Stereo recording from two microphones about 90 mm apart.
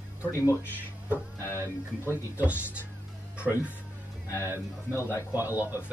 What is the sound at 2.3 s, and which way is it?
Speech, 15° right (ahead or behind).